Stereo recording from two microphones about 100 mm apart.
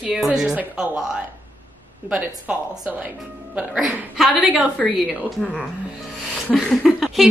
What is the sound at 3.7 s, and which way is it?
A woman's voice, 5° right (ahead or behind).